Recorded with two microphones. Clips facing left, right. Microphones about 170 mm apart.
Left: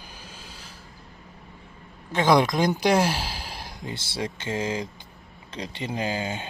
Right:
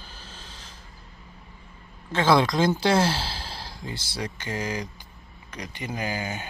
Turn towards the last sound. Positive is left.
turn(degrees=25)  # may be behind; listen again after turning